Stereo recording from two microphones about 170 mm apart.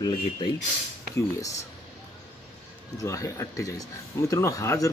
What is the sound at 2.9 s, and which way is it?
Speech, 20° left (ahead or behind).